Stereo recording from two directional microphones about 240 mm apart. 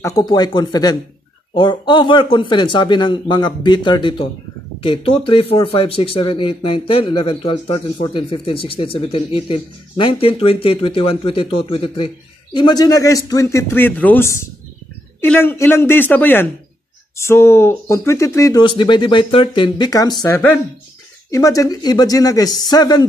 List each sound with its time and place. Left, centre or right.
0.0 s speech: centre